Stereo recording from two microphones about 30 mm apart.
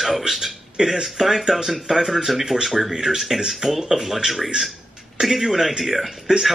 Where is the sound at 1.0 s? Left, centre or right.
Centre.